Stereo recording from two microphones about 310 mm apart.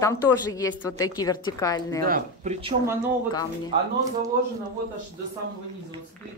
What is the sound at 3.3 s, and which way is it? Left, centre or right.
Speech, centre.